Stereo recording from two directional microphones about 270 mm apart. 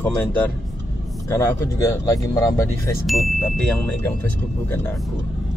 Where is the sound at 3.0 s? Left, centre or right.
Centre.